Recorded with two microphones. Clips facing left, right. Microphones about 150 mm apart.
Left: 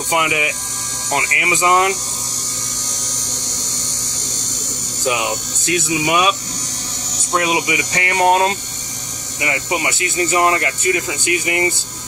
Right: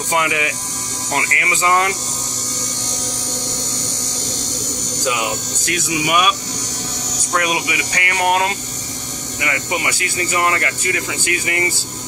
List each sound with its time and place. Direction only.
0.1 s speech: 20° left (ahead or behind)
5.7 s speech: 25° left (ahead or behind)
7.3 s speech: 25° left (ahead or behind)